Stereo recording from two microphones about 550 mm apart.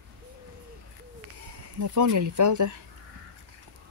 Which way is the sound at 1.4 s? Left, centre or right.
Right.